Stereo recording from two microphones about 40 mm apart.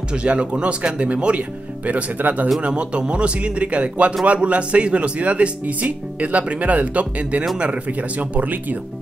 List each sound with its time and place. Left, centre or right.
0.1 s a man's voice: right
2.6 s a man's voice: right